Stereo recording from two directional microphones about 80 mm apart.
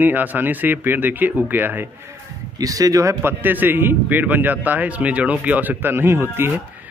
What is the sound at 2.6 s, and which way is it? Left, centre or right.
Speech, right.